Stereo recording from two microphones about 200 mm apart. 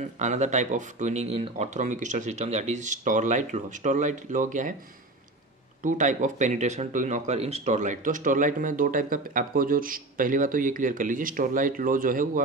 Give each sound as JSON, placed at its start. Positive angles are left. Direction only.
{"t": 0.2, "sound": "speech", "side_deg": -35}
{"t": 5.8, "sound": "speech", "side_deg": -40}